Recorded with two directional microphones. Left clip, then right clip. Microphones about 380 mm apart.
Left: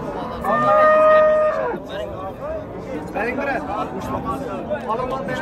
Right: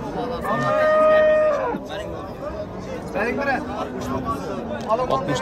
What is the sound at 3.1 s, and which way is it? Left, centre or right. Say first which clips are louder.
Speech: even; centre.